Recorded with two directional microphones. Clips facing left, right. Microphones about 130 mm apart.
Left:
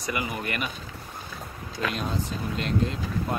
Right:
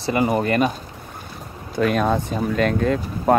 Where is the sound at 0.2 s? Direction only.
40° right (ahead or behind).